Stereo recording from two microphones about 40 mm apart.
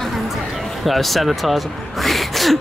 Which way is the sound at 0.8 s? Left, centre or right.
Centre.